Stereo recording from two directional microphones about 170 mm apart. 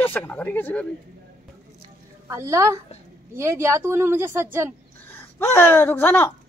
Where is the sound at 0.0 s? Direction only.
10° left (ahead or behind).